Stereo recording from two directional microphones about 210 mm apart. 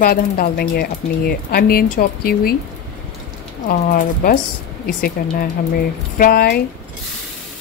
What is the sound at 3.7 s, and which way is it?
Speech, 40° left (ahead or behind).